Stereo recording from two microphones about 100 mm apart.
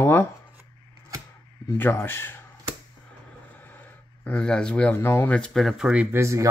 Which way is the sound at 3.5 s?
20° left (ahead or behind).